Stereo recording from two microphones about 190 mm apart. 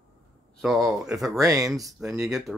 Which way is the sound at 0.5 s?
Centre (ahead or behind).